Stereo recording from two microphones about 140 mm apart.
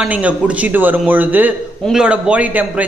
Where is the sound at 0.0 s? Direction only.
10° right (ahead or behind).